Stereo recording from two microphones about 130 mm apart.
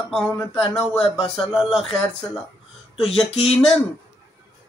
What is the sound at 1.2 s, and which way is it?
Speech, 45° left (ahead or behind).